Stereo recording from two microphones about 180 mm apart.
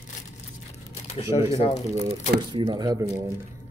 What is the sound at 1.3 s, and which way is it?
Speech, 35° left (ahead or behind).